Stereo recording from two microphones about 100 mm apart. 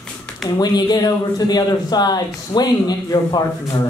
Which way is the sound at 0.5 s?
40° left (ahead or behind).